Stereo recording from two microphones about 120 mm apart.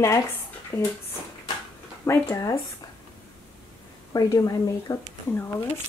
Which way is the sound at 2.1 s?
25° left (ahead or behind).